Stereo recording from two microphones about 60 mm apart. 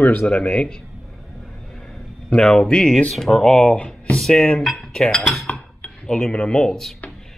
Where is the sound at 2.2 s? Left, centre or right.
Centre.